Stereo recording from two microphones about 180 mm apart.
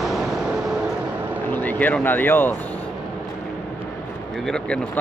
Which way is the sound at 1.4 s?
10° left (ahead or behind).